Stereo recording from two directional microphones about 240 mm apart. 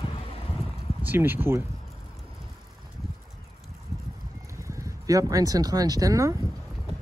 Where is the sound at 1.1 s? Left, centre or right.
Centre.